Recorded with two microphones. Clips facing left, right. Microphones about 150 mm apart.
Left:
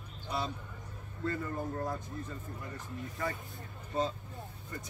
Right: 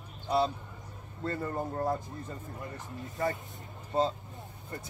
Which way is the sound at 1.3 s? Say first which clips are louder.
Right 2 dB; 30° right (ahead or behind).